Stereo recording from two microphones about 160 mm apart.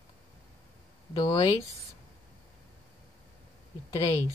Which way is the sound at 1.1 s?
25° left (ahead or behind).